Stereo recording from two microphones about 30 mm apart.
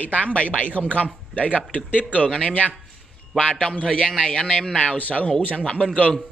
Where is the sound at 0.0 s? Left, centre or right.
Left.